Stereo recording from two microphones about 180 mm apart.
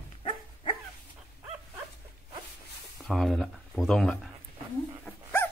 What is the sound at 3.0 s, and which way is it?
Speech, centre (ahead or behind).